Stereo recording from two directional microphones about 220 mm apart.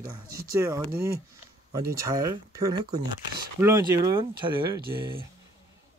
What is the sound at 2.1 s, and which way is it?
Speech, 15° right (ahead or behind).